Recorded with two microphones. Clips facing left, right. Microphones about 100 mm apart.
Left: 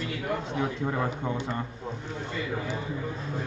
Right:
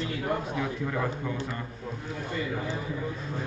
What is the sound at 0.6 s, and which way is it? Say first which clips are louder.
Speech: left 1 dB; 30° left (ahead or behind).